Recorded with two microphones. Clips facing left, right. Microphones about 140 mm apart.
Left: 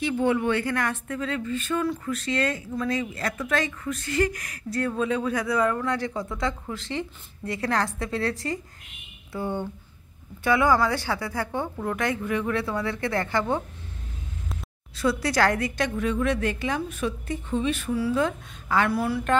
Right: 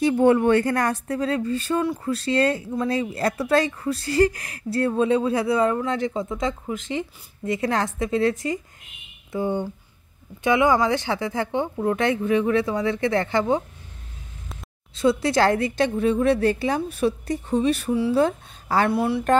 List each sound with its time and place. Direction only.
0.0 s speech: 45° right (ahead or behind); by 13.6 s 20° right (ahead or behind)
15.0 s speech: 25° right (ahead or behind)